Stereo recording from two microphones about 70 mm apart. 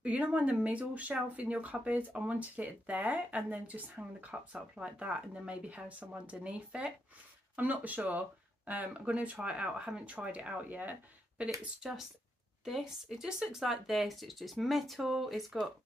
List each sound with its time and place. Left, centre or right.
0.0 s speech: centre
11.8 s speech: centre